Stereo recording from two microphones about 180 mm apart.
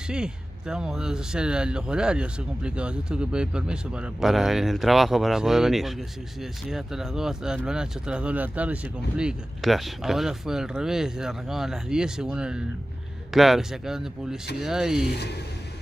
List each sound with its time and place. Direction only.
0.1 s speech: 5° right (ahead or behind)
15.0 s speech: 65° left (ahead or behind)